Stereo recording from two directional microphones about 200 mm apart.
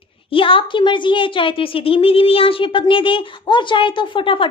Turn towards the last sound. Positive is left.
turn(degrees=25)  # may be behind; listen again after turning